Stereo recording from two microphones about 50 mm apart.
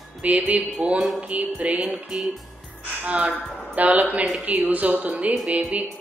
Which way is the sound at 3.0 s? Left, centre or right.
Right.